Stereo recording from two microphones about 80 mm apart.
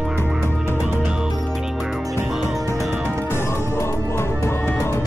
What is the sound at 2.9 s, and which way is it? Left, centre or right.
Music, right.